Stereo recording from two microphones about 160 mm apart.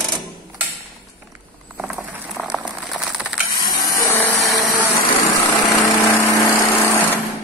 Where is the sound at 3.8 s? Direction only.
20° left (ahead or behind).